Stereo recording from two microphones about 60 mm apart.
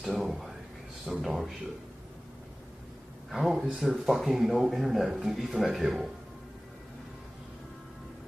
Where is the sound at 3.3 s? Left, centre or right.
Centre.